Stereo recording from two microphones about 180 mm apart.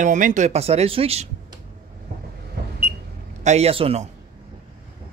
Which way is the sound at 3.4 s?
35° right (ahead or behind).